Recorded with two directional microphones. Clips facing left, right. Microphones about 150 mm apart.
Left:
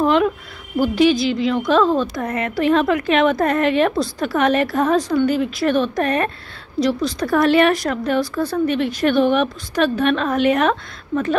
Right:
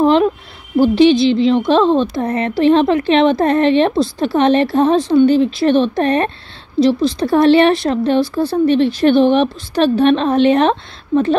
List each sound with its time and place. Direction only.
0.0 s a woman's voice: 30° right (ahead or behind)